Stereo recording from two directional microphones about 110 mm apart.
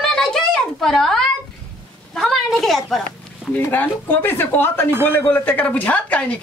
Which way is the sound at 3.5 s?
15° left (ahead or behind).